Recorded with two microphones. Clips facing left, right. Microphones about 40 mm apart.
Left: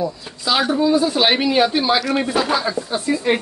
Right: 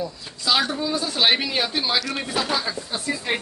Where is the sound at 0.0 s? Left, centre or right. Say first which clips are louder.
Left 4 dB; centre.